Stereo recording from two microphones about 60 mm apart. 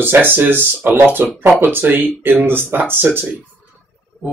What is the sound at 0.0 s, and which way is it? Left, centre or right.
Speech, right.